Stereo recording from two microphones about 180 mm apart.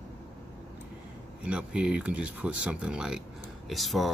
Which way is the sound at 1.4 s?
5° right (ahead or behind).